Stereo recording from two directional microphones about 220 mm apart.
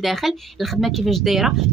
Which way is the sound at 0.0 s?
Centre (ahead or behind).